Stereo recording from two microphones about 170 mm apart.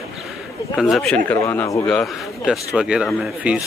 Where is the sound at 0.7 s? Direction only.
Centre (ahead or behind); by 1.9 s 15° left (ahead or behind).